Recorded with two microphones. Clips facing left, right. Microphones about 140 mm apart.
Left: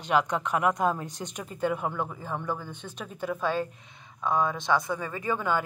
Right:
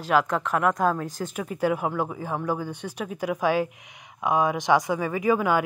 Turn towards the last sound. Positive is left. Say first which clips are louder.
# right 6 dB
turn(degrees=-10)  # may be behind; listen again after turning